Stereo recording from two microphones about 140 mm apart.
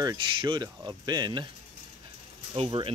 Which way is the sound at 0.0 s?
30° right (ahead or behind).